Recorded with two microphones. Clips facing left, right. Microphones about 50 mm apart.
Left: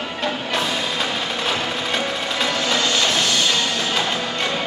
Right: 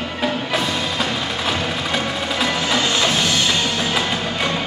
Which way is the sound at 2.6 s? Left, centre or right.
Centre.